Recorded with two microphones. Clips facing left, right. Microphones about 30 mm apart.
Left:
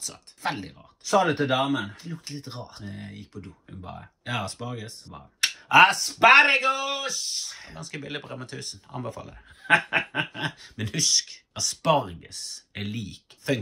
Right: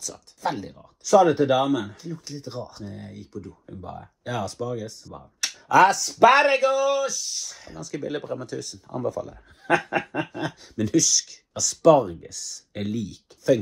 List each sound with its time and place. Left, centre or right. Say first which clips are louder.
0.0 s speech: right 2 dB; left